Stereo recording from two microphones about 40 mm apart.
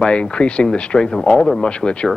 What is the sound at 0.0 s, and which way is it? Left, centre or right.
A man's voice, left.